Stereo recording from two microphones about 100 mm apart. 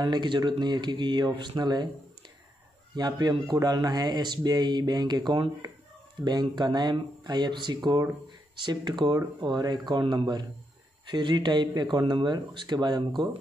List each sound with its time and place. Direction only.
0.0 s speech: 45° right (ahead or behind)
3.0 s speech: 40° right (ahead or behind)